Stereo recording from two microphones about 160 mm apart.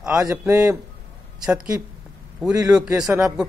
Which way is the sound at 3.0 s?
5° right (ahead or behind).